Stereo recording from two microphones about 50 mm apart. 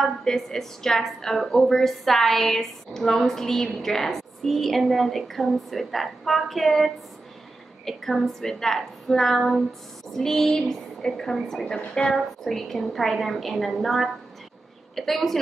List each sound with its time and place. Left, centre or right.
0.0 s a woman's voice: centre
7.8 s a sound: centre
12.2 s a woman's voice: centre